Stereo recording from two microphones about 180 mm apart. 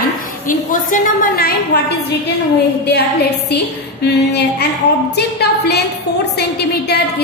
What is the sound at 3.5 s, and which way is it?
A woman's voice, 65° left (ahead or behind).